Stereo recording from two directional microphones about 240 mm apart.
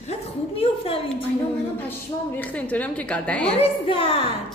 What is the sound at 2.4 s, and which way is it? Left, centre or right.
A woman's voice, centre.